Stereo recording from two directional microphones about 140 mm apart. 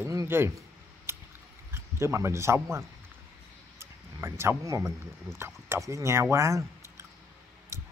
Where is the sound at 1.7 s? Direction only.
20° right (ahead or behind).